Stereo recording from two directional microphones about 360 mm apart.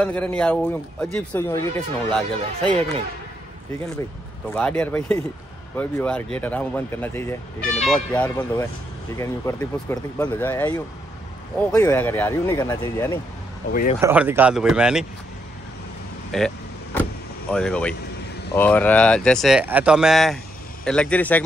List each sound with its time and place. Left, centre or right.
0.0 s speech: centre
4.5 s speech: centre
13.7 s speech: left
14.0 s speech: centre
16.3 s vehicle: centre
17.5 s speech: centre